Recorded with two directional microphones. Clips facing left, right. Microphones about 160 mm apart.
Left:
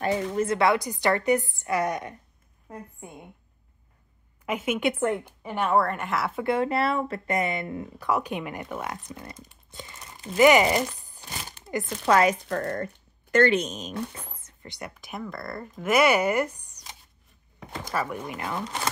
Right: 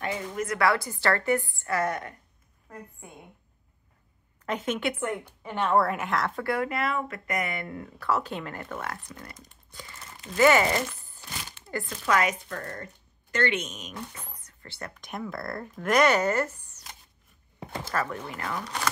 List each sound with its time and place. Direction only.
0.0 s speech: 30° left (ahead or behind); by 2.1 s 15° left (ahead or behind)
4.5 s speech: 10° left (ahead or behind)
5.8 s speech: centre (ahead or behind)
6.4 s speech: 25° left (ahead or behind)
11.6 s a sound: 20° left (ahead or behind)
12.1 s speech: 30° left (ahead or behind)
12.5 s speech: 55° left (ahead or behind)
13.5 s speech: 35° left (ahead or behind)
14.4 s whispering: 15° left (ahead or behind)
15.0 s speech: centre (ahead or behind); by 18.8 s 20° left (ahead or behind)